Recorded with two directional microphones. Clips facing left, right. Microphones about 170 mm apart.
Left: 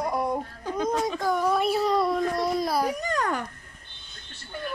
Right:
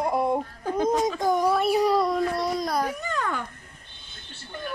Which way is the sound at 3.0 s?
40° left (ahead or behind).